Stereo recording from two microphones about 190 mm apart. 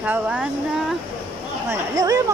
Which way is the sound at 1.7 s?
15° right (ahead or behind).